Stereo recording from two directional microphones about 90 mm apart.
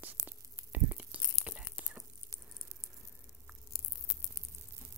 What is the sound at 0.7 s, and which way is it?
Whispering, 20° right (ahead or behind).